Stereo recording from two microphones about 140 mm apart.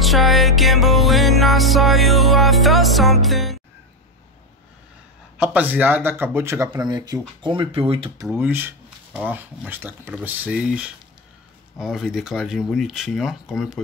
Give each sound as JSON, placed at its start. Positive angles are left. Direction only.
{"t": 0.0, "sound": "music", "side_deg": 0}
{"t": 5.4, "sound": "speech", "side_deg": -10}
{"t": 6.8, "sound": "speech", "side_deg": -30}
{"t": 8.3, "sound": "speech", "side_deg": -15}